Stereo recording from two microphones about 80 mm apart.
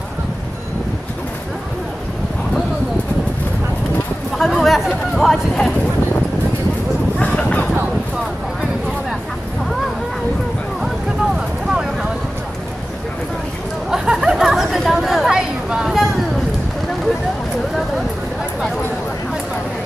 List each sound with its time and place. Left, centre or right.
4.4 s speech: centre
7.2 s a sound: centre
11.3 s vehicle: centre
13.8 s chatter: centre